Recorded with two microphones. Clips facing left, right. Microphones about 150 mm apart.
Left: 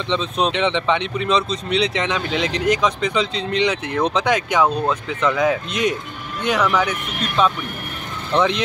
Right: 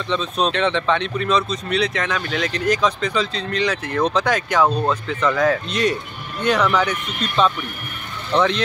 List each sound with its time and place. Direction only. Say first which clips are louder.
0.1 s speech: even; 20° left (ahead or behind)